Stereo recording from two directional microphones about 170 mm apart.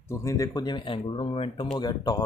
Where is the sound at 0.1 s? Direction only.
15° left (ahead or behind).